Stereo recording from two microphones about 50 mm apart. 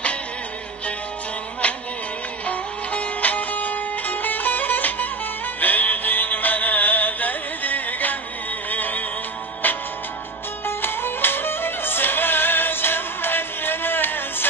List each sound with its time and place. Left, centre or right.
1.6 s music: left
10.6 s music: left